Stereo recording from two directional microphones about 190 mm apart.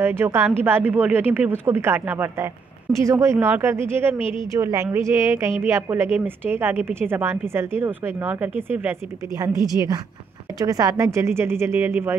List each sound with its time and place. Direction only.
0.0 s a woman's voice: 15° right (ahead or behind)